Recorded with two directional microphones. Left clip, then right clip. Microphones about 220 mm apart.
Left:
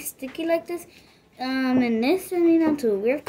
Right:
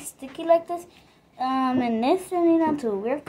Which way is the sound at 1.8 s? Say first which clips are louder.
Even; 5° right (ahead or behind).